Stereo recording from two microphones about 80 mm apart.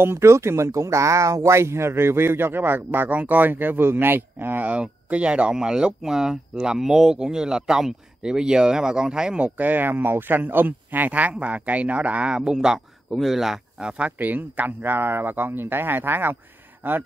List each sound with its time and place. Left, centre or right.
0.0 s speech: right; by 9.5 s centre
9.6 s speech: right